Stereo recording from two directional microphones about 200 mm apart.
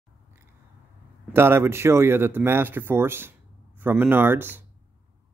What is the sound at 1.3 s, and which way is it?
Speech, 10° right (ahead or behind).